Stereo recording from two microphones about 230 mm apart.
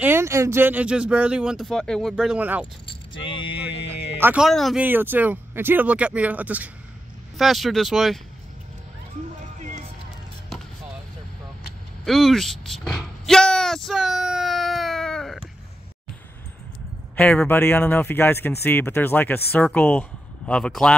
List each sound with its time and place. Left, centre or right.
0.0 s speech: centre
2.9 s speech: left
3.7 s music: left
4.2 s speech: centre
12.0 s a sound: centre
17.1 s speech: centre